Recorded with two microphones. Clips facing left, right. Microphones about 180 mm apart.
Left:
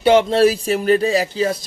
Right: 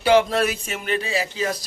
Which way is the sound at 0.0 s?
25° left (ahead or behind).